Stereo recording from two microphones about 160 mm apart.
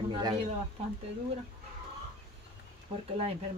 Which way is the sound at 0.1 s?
30° right (ahead or behind).